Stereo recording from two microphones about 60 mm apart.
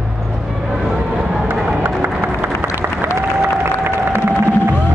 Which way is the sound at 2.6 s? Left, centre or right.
Right.